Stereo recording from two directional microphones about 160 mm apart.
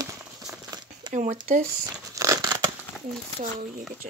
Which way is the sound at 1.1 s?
50° right (ahead or behind).